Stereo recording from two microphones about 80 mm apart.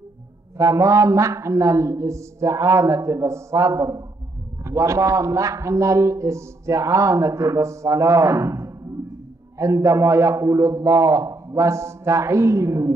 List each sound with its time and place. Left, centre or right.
0.6 s a man's voice: right